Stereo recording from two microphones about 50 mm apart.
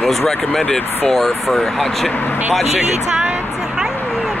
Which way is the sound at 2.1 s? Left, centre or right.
Left.